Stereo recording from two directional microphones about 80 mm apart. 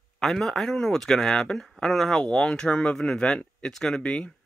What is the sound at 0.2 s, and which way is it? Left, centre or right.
Speech, centre.